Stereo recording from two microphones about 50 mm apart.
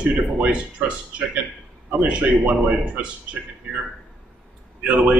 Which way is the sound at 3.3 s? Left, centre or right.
Right.